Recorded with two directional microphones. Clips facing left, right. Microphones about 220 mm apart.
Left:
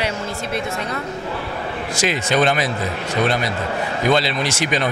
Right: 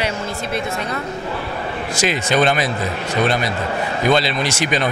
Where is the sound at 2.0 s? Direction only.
15° right (ahead or behind).